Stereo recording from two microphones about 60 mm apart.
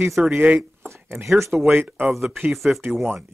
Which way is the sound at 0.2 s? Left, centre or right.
Right.